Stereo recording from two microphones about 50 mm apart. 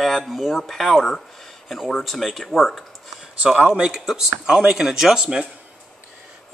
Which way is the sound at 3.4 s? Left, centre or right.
Centre.